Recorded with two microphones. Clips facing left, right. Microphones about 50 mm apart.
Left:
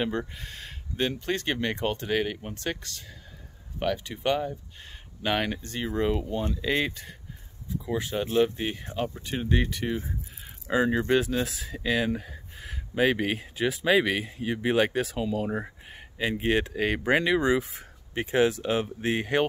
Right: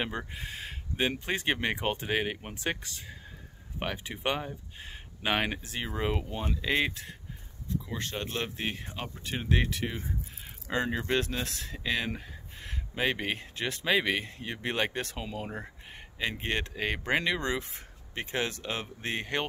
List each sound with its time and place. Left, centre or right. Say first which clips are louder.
0.3 s speech: right 2 dB; centre
7.8 s speech: left 7 dB; centre